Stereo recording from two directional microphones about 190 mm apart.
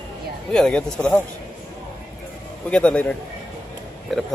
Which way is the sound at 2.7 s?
5° left (ahead or behind).